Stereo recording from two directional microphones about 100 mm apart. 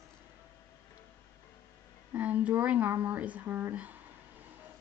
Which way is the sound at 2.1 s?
15° right (ahead or behind).